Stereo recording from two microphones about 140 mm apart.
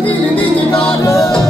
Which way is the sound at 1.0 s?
20° left (ahead or behind).